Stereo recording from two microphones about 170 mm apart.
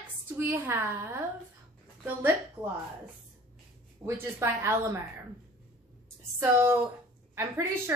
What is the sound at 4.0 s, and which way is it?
A woman's voice, 15° right (ahead or behind).